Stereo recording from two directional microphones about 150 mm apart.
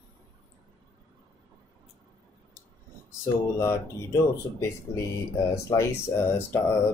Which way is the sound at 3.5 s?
20° left (ahead or behind).